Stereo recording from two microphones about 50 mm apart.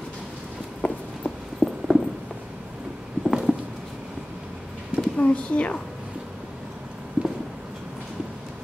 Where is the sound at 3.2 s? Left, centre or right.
Centre.